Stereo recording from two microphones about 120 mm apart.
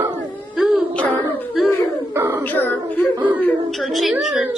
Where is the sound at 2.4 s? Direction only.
15° left (ahead or behind).